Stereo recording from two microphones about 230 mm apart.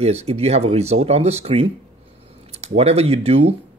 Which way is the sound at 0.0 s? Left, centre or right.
Right.